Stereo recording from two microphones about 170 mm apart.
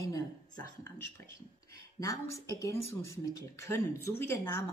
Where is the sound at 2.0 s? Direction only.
20° left (ahead or behind).